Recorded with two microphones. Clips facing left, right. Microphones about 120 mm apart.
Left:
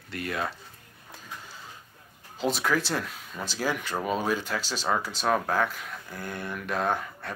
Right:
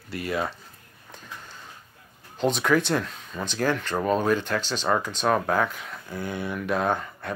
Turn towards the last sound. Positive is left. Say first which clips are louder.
# right 2 dB
turn(degrees=0)  # may be behind; listen again after turning